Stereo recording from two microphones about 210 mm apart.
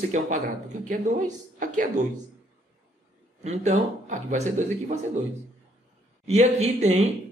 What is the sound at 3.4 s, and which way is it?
Speech, 35° right (ahead or behind).